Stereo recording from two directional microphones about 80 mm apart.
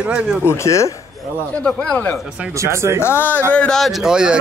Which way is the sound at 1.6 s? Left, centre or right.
Centre.